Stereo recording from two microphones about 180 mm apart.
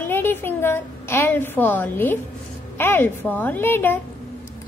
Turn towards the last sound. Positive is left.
turn(degrees=10)  # may be behind; listen again after turning